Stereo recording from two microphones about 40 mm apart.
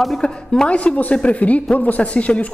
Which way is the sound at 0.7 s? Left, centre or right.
Left.